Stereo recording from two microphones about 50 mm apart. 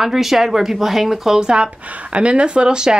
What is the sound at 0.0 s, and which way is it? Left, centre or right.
A woman's voice, centre.